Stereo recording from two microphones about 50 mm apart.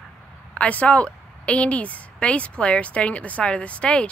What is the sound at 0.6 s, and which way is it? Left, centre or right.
A woman's voice, left.